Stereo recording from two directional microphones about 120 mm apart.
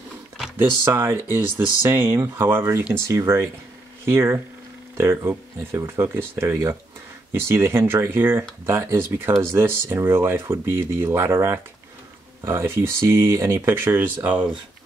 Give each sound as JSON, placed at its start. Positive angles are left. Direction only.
{"t": 0.6, "sound": "speech", "side_deg": -20}